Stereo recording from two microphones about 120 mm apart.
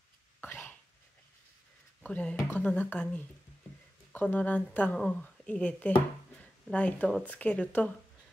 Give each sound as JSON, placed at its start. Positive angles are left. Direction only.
{"t": 0.4, "sound": "cough", "side_deg": 20}
{"t": 2.0, "sound": "speech", "side_deg": 10}
{"t": 4.1, "sound": "speech", "side_deg": 15}